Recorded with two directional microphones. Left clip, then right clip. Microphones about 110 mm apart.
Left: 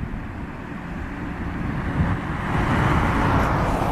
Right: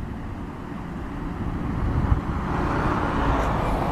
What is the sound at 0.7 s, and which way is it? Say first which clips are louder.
Vehicle: left 2 dB; 20° left (ahead or behind).